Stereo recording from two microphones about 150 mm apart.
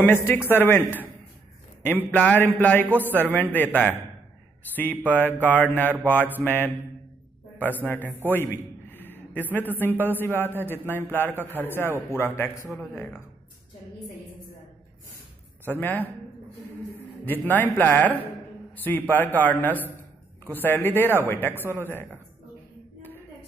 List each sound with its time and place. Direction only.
0.0 s a man's voice: 15° left (ahead or behind)
3.1 s a man's voice: 10° right (ahead or behind)
3.5 s a man's voice: 10° left (ahead or behind)
5.3 s a man's voice: 10° left (ahead or behind)
6.1 s a man's voice: 15° right (ahead or behind)
6.4 s a man's voice: 15° left (ahead or behind)
15.6 s a man's voice: 10° left (ahead or behind)
17.2 s a man's voice: 10° left (ahead or behind)